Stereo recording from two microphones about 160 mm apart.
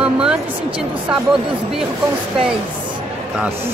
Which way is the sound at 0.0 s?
5° right (ahead or behind).